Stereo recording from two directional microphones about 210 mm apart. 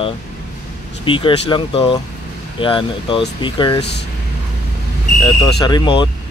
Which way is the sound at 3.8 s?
55° left (ahead or behind).